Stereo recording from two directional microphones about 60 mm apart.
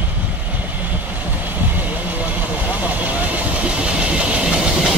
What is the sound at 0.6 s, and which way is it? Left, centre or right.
Vehicle, right.